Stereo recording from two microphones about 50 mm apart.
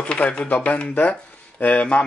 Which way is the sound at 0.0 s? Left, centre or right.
Left.